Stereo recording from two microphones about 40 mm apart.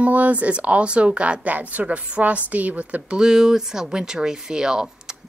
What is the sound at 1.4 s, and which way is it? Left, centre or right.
Speech, right.